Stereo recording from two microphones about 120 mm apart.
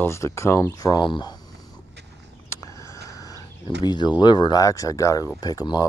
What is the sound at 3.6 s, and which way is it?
Speech, 40° left (ahead or behind).